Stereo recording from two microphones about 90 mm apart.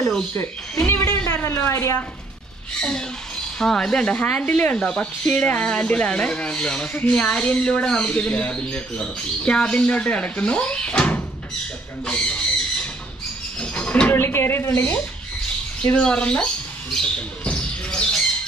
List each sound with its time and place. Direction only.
0.3 s a woman's voice: 30° left (ahead or behind)
2.8 s speech: 10° left (ahead or behind)
13.6 s speech: 15° left (ahead or behind)
15.8 s squawk: 15° left (ahead or behind)